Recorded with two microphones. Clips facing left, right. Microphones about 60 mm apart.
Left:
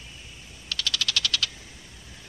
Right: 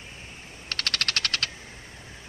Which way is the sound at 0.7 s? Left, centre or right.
Right.